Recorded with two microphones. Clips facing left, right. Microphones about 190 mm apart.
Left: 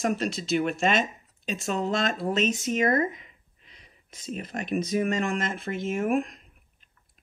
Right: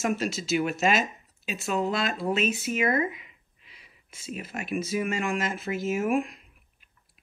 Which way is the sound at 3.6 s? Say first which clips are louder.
Left 1 dB; 5° right (ahead or behind).